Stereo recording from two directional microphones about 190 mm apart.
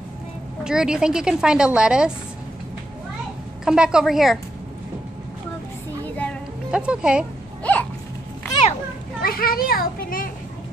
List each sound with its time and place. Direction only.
0.7 s a woman's voice: 5° right (ahead or behind)
3.6 s a woman's voice: 5° right (ahead or behind)
6.0 s music: 5° left (ahead or behind)
6.7 s speech: 5° right (ahead or behind)
7.7 s a sound: 10° left (ahead or behind)
9.2 s a child's voice: 50° left (ahead or behind)